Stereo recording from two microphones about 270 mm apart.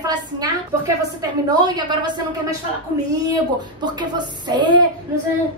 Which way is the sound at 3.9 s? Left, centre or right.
Centre.